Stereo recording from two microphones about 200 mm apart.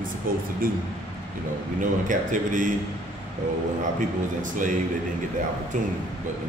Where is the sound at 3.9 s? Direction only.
40° right (ahead or behind).